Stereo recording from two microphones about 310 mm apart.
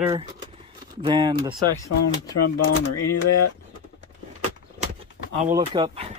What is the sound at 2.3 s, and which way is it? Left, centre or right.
Speech, left.